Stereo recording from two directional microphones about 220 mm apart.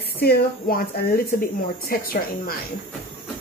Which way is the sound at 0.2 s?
45° left (ahead or behind).